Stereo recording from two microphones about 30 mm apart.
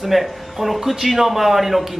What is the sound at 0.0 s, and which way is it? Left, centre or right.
A man's voice, centre.